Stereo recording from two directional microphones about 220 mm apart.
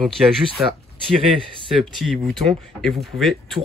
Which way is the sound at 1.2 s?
25° right (ahead or behind).